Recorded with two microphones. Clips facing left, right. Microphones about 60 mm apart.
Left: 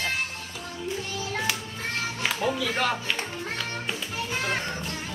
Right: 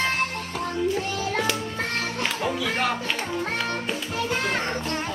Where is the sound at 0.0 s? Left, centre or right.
Right.